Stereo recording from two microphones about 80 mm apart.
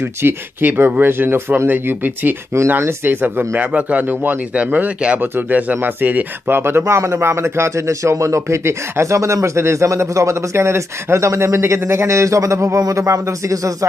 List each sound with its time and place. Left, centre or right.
0.2 s speech: right